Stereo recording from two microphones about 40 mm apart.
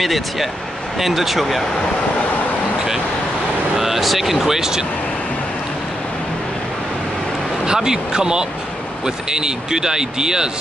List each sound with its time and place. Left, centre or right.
0.0 s speech: centre
3.7 s speech: centre
7.6 s speech: centre